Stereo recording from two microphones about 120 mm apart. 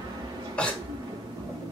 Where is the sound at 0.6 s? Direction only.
10° left (ahead or behind).